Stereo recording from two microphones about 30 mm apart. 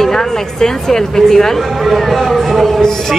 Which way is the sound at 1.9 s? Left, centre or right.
Centre.